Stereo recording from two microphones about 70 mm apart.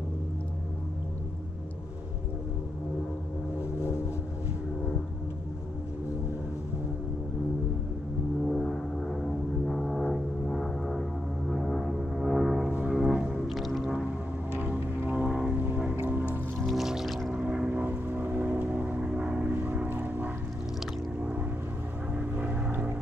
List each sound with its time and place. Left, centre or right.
8.5 s music: centre
12.6 s music: right
12.9 s music: centre
13.5 s music: centre
14.6 s music: right
15.2 s vehicle: centre
15.5 s music: right
16.6 s music: centre
17.3 s vehicle: centre
22.1 s vehicle: right